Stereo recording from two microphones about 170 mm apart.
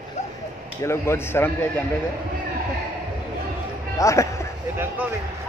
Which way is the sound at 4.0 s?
20° left (ahead or behind).